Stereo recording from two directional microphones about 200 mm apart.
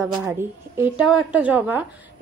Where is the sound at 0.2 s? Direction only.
10° right (ahead or behind).